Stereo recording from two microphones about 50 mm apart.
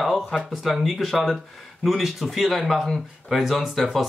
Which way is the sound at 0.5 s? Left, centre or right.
Centre.